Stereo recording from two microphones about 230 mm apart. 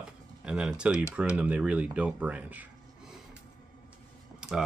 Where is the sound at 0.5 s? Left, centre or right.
Centre.